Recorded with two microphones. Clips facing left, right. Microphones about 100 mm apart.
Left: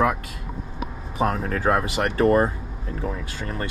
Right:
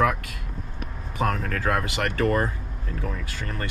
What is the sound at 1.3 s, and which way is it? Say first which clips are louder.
Speech: left 3 dB; 30° left (ahead or behind).